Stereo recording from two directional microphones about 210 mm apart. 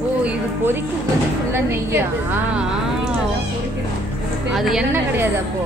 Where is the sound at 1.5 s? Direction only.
10° right (ahead or behind).